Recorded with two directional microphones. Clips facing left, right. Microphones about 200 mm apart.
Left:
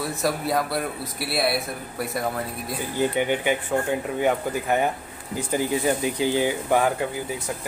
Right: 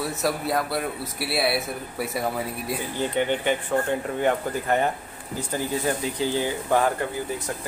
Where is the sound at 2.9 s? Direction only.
10° left (ahead or behind).